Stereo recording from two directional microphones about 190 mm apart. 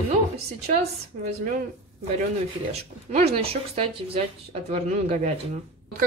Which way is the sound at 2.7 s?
35° right (ahead or behind).